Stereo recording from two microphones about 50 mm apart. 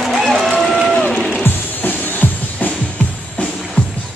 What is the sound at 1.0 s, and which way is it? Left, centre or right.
Music, centre.